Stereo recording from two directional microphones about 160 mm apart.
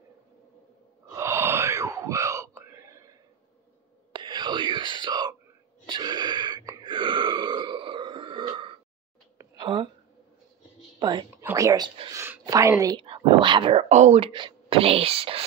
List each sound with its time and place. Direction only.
1.1 s groan: 15° right (ahead or behind)
4.1 s whispering: 30° right (ahead or behind)
5.9 s burping: 30° right (ahead or behind)
9.4 s a sound: 25° right (ahead or behind)
11.0 s a sound: 30° right (ahead or behind)
13.0 s speech: 30° right (ahead or behind)